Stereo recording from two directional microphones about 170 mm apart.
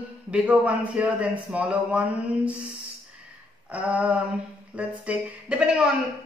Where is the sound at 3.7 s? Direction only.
10° right (ahead or behind).